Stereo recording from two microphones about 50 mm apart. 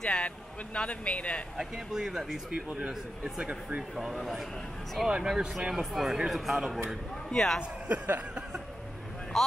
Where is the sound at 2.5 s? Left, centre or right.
Right.